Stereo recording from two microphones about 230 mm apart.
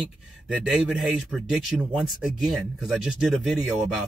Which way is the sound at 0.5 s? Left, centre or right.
Centre.